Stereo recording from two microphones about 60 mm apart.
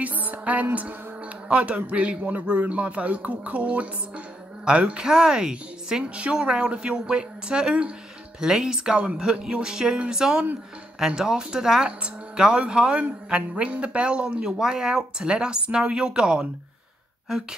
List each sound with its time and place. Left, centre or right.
0.0 s a man's voice: right